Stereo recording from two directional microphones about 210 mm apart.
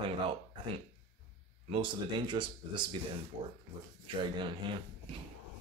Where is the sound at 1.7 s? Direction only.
25° right (ahead or behind).